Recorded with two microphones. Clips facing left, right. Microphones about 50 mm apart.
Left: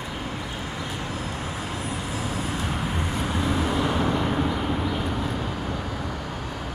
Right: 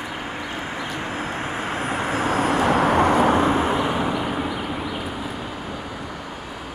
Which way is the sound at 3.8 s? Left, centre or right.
Centre.